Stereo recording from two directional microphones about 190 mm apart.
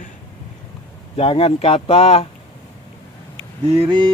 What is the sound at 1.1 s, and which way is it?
Speech, 30° left (ahead or behind).